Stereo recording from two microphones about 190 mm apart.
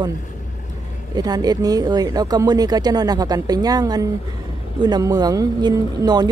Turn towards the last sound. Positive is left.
turn(degrees=-20)  # may be behind; listen again after turning